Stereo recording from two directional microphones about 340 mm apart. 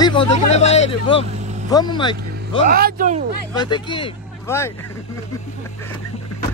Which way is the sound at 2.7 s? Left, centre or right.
Right.